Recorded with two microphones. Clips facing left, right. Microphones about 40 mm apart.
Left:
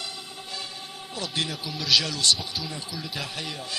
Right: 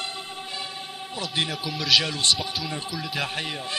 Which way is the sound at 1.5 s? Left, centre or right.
Centre.